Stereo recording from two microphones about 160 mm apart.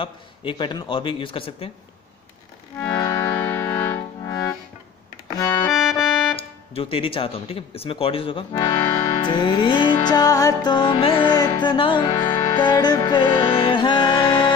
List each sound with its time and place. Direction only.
0.0 s speech: 30° left (ahead or behind)
2.8 s music: 20° left (ahead or behind)
5.3 s accordion: 20° left (ahead or behind)
6.3 s speech: 35° left (ahead or behind)
8.5 s music: 25° left (ahead or behind)